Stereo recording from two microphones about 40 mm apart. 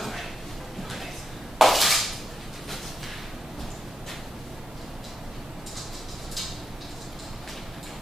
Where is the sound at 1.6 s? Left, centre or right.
Centre.